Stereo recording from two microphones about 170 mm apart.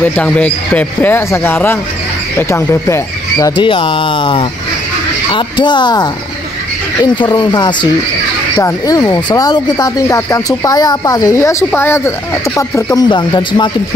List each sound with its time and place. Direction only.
0.0 s speech: 10° left (ahead or behind)
3.5 s speech: 30° left (ahead or behind)
13.1 s speech: 30° left (ahead or behind)